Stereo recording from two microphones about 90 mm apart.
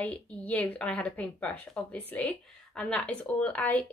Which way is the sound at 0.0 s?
15° left (ahead or behind).